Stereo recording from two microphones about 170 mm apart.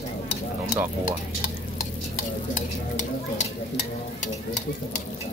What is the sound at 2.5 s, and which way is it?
Speech, 45° left (ahead or behind).